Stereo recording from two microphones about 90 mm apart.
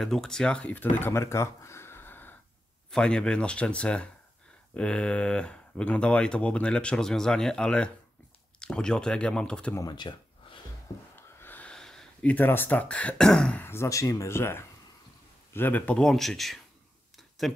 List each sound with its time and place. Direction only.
0.0 s speech: 5° left (ahead or behind); by 2.3 s 20° left (ahead or behind)
2.9 s speech: 10° left (ahead or behind)
9.9 s a sound: 55° left (ahead or behind)
11.1 s snort: 25° left (ahead or behind)
11.7 s speech: 5° left (ahead or behind)
13.6 s speech: 30° left (ahead or behind)
16.0 s speech: 5° left (ahead or behind)